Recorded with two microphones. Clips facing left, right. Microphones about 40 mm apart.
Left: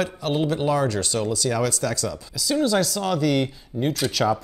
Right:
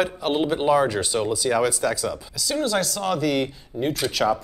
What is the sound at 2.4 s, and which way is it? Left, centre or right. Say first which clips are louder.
Speech: left 3 dB; centre.